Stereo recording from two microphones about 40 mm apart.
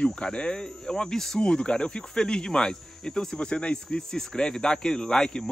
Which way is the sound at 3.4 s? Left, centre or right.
Left.